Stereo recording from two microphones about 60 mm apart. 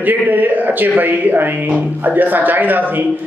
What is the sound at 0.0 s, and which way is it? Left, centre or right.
Speech, right.